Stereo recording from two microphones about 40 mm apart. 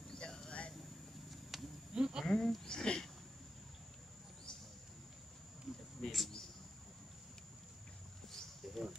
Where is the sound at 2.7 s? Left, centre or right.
Centre.